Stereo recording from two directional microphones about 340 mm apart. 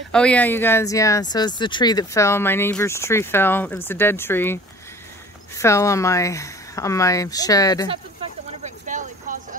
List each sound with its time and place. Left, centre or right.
0.1 s speech: centre
5.6 s speech: centre
8.8 s a sound: right